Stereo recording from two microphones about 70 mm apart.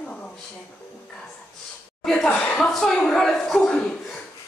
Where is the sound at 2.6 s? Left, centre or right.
Centre.